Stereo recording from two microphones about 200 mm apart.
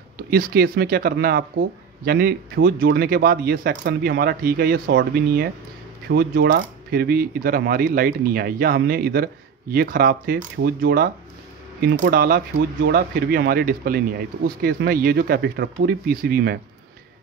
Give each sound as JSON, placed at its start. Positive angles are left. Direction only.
{"t": 0.3, "sound": "speech", "side_deg": -50}